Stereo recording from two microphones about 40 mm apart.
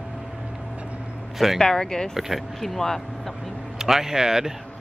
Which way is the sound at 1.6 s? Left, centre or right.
Centre.